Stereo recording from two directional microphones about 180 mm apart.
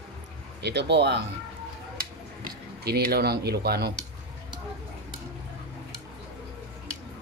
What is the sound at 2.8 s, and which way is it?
Speech, 60° right (ahead or behind).